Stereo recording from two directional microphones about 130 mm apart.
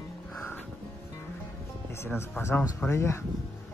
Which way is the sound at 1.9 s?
20° left (ahead or behind).